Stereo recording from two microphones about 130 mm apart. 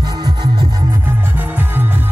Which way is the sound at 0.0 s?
35° right (ahead or behind).